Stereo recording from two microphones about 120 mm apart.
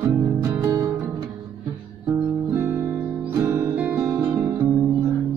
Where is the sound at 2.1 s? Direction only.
20° right (ahead or behind).